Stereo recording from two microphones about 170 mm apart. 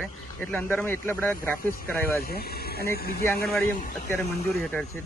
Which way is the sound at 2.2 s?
65° left (ahead or behind).